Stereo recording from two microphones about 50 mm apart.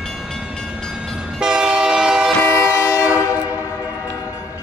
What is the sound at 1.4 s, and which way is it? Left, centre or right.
Train, centre.